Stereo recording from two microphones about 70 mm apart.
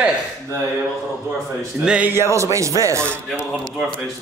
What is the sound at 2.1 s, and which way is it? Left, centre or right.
Speech, right.